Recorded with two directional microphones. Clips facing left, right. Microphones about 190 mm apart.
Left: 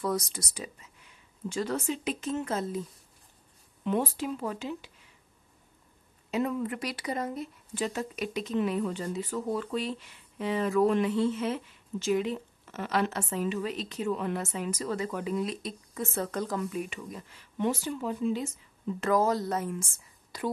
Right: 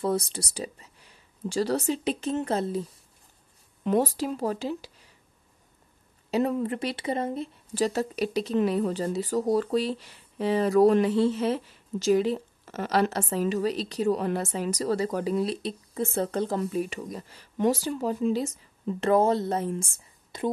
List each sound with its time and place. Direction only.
0.0 s speech: 30° right (ahead or behind)
3.8 s speech: 40° right (ahead or behind)
6.3 s speech: 35° right (ahead or behind)